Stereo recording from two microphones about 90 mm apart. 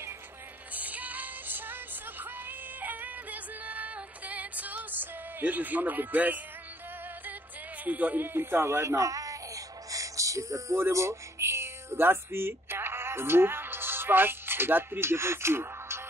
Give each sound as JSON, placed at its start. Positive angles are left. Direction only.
{"t": 0.7, "sound": "music", "side_deg": -15}
{"t": 7.8, "sound": "speech", "side_deg": -15}
{"t": 9.8, "sound": "music", "side_deg": -40}
{"t": 10.8, "sound": "a sound", "side_deg": -35}